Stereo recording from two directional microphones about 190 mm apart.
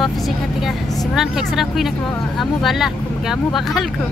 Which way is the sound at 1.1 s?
Centre (ahead or behind).